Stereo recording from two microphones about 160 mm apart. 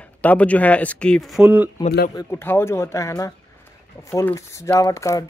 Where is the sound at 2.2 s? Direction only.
15° left (ahead or behind).